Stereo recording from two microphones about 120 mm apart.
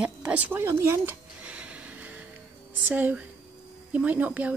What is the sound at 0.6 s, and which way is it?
Speech, 20° right (ahead or behind).